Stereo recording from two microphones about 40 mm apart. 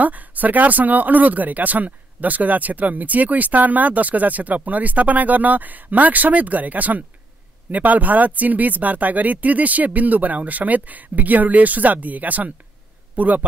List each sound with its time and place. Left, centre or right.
0.0 s speech: right